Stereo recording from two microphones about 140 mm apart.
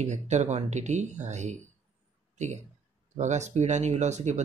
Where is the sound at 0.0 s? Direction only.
55° right (ahead or behind).